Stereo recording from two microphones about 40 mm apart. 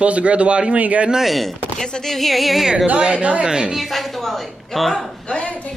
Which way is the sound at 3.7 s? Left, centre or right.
Centre.